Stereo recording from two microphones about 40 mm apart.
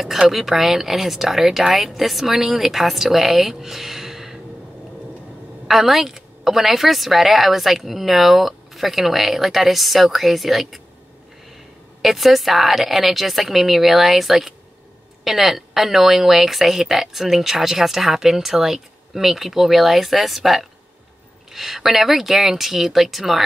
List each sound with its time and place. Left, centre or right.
0.3 s speech: centre
5.7 s a woman's voice: centre
12.0 s a woman's voice: centre